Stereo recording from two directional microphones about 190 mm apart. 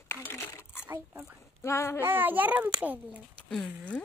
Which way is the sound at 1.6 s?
15° left (ahead or behind).